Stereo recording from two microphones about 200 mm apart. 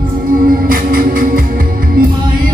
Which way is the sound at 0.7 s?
45° right (ahead or behind).